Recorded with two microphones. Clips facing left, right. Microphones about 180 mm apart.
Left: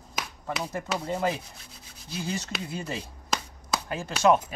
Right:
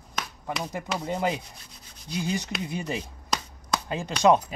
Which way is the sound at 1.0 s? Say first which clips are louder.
Right 2 dB; 20° right (ahead or behind).